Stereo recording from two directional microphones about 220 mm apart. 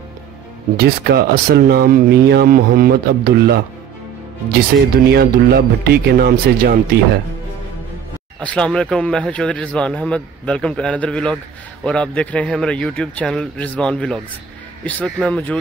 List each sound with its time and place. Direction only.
0.7 s speech: 45° right (ahead or behind)
5.0 s speech: 45° right (ahead or behind)
8.4 s speech: 5° left (ahead or behind)